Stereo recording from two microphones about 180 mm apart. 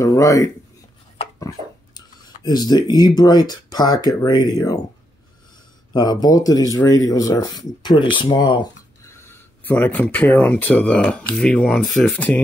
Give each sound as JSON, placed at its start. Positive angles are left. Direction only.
{"t": 0.0, "sound": "speech", "side_deg": 15}
{"t": 2.0, "sound": "speech", "side_deg": 25}
{"t": 5.9, "sound": "speech", "side_deg": 20}
{"t": 9.1, "sound": "speech", "side_deg": 10}